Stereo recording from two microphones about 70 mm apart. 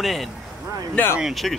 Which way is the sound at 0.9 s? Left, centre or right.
Left.